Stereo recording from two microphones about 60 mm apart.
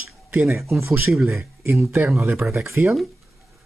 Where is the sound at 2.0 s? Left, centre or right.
Right.